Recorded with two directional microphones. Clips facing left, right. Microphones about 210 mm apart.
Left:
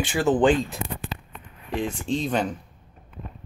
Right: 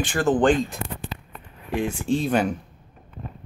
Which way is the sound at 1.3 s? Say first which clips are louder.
Right 4 dB; 5° right (ahead or behind).